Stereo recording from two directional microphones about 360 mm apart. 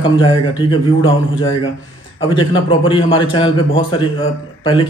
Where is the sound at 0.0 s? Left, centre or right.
Centre.